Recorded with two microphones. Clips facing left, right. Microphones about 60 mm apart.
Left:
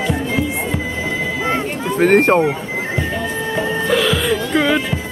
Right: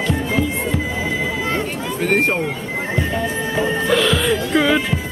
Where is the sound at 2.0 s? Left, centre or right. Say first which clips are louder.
Left 6 dB; left.